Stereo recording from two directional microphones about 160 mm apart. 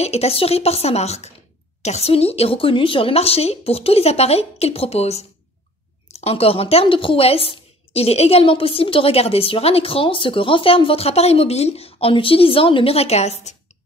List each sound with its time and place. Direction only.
0.0 s a woman's voice: 40° left (ahead or behind)
6.2 s a woman's voice: 40° left (ahead or behind)